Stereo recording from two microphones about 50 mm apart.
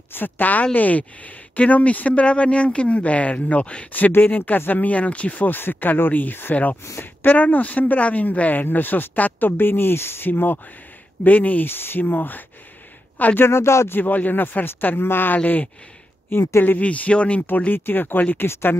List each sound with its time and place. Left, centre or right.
0.1 s speech: left
3.9 s speech: left
5.5 s speech: left
13.5 s speech: left
13.8 s speech: left
15.3 s speech: left
16.3 s speech: left
16.6 s speech: left
17.4 s speech: left
18.5 s speech: left